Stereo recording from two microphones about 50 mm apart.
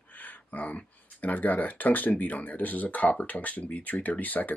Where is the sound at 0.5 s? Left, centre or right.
Left.